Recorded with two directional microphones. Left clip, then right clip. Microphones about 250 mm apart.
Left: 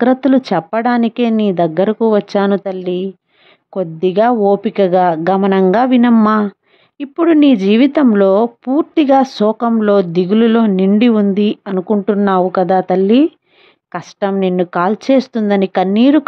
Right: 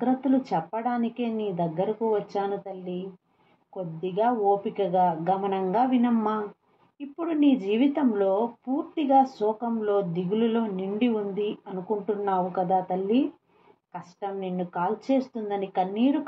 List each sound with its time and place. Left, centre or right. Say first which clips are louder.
0.0 s speech: left 13 dB; left